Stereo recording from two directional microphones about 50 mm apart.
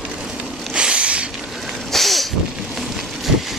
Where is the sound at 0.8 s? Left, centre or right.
Right.